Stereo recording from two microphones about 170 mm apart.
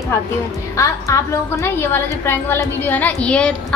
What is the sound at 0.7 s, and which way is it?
A woman's voice, 15° left (ahead or behind).